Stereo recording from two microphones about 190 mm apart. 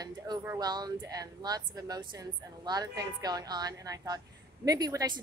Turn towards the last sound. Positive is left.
turn(degrees=-20)  # may be behind; listen again after turning